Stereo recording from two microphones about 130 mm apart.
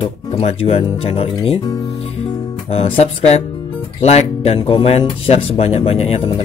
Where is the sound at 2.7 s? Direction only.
55° left (ahead or behind).